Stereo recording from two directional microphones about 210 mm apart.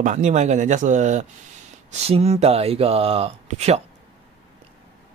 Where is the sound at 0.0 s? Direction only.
35° right (ahead or behind).